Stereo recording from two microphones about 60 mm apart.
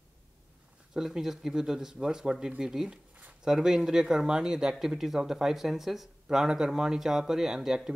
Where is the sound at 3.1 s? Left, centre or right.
Right.